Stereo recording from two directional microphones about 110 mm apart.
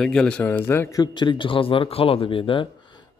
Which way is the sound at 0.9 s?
40° left (ahead or behind).